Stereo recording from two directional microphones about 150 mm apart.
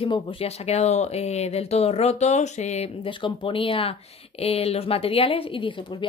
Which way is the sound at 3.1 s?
35° left (ahead or behind).